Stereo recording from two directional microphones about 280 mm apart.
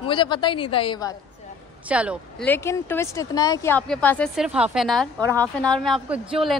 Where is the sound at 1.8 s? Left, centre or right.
Centre.